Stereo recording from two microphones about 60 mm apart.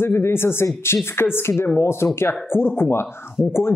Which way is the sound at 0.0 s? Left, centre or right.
Left.